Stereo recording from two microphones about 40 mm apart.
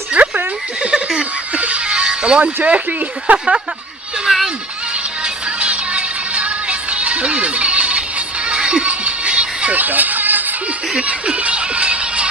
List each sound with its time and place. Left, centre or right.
0.2 s a sound: right
0.8 s a sound: right
1.5 s speech: right
4.3 s music: centre
5.2 s music: right
9.8 s music: right
11.0 s music: right